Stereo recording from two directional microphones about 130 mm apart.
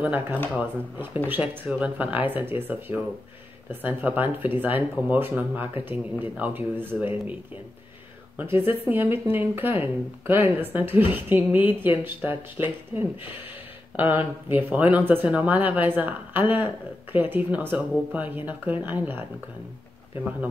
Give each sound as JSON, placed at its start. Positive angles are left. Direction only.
{"t": 0.0, "sound": "speech", "side_deg": -15}
{"t": 8.4, "sound": "speech", "side_deg": -15}